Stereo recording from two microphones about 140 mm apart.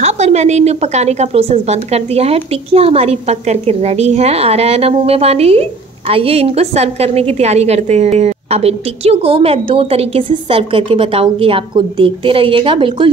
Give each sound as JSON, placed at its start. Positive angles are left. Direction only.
{"t": 0.0, "sound": "a woman's voice", "side_deg": -55}